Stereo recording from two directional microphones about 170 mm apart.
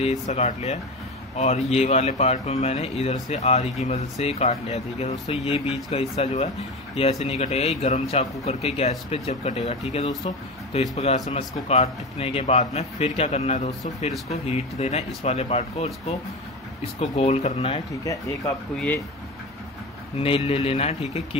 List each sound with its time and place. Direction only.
0.0 s a man's voice: 40° left (ahead or behind)
17.0 s a man's voice: 40° left (ahead or behind)
18.0 s speech: 20° left (ahead or behind)
20.2 s a man's voice: 35° left (ahead or behind)